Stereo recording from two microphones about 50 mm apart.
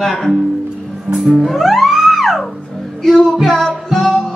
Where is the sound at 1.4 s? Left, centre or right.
Centre.